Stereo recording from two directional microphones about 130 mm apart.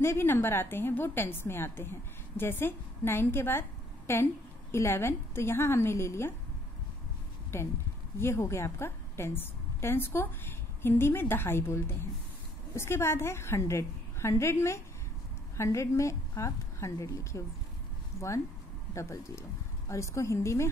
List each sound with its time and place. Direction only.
0.0 s a woman's voice: 20° left (ahead or behind)
7.5 s a woman's voice: 20° left (ahead or behind)
18.9 s a woman's voice: 25° left (ahead or behind)